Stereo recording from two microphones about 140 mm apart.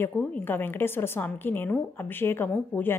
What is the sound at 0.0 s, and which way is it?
Speech, 15° left (ahead or behind).